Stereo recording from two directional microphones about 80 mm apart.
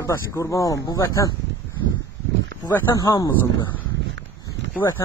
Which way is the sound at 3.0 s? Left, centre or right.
Left.